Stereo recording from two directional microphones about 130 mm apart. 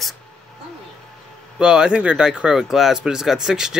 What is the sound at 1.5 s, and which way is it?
Speech, 5° right (ahead or behind).